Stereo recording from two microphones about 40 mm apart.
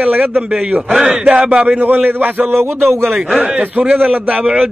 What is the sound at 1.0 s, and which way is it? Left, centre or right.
Speech, right.